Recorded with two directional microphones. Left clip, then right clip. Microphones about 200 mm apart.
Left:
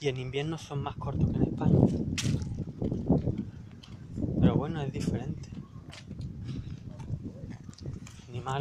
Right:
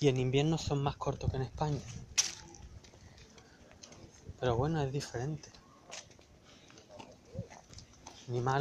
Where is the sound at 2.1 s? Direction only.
25° right (ahead or behind).